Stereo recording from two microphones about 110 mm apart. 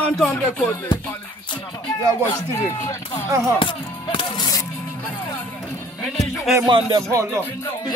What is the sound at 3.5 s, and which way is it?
Music, 50° left (ahead or behind).